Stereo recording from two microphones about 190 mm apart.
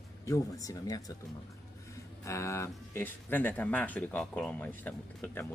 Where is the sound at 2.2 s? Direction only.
15° left (ahead or behind).